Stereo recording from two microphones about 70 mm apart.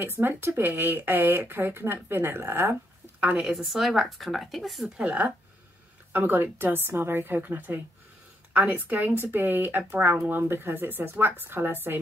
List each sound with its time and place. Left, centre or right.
0.0 s speech: right
3.3 s speech: centre
4.9 s speech: centre
6.1 s a woman's voice: right